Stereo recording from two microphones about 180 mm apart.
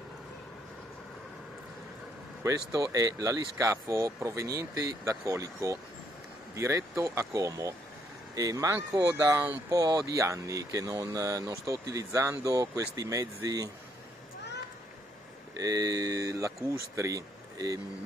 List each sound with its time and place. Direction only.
2.4 s speech: 20° right (ahead or behind)
15.5 s speech: 20° right (ahead or behind)